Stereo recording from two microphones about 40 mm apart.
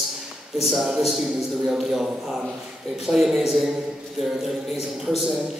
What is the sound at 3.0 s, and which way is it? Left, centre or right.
Speech, centre.